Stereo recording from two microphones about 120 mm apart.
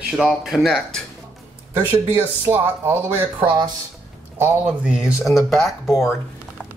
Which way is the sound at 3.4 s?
45° right (ahead or behind).